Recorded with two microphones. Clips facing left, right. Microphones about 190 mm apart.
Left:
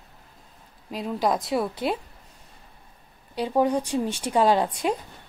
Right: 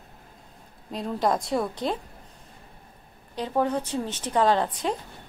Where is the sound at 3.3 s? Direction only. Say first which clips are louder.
Left 3 dB; 10° left (ahead or behind).